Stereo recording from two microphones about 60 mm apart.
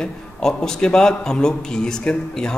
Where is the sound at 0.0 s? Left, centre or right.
Centre.